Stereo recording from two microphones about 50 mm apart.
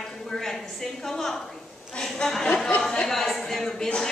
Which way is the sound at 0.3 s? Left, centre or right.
Centre.